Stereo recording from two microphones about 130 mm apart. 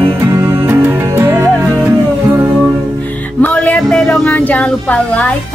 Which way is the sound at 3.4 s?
10° left (ahead or behind).